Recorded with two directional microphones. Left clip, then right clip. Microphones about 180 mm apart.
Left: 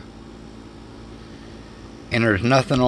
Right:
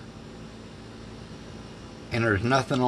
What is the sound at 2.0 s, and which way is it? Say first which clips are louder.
Speech: left 6 dB; 50° left (ahead or behind).